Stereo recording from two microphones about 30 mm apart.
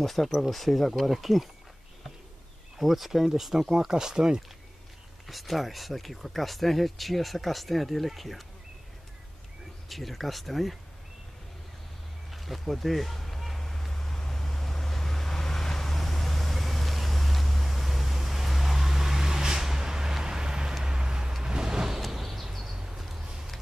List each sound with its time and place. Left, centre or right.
0.0 s speech: centre
2.8 s speech: centre
3.9 s speech: right
5.3 s speech: centre
9.8 s speech: centre
12.3 s speech: centre
13.6 s vehicle: centre
22.0 s vehicle: centre
22.9 s a sound: centre